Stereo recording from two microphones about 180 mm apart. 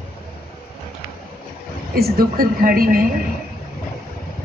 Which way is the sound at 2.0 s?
55° right (ahead or behind).